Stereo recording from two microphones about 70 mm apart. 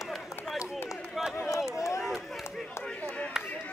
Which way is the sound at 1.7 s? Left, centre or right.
Left.